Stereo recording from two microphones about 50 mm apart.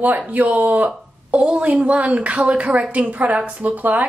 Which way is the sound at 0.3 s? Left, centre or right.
Right.